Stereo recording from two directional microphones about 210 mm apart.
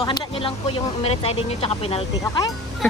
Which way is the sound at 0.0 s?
20° left (ahead or behind).